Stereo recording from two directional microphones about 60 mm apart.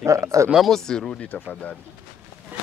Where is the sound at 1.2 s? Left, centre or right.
Left.